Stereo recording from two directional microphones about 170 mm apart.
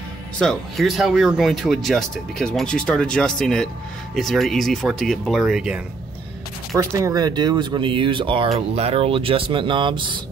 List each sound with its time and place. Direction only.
0.4 s speech: centre (ahead or behind)
6.9 s speech: 20° right (ahead or behind)